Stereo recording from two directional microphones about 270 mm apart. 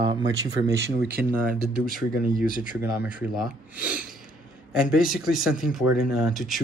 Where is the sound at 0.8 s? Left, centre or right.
Right.